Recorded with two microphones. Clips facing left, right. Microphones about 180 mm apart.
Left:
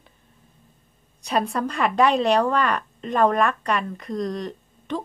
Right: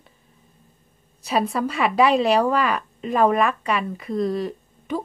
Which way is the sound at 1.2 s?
Centre (ahead or behind).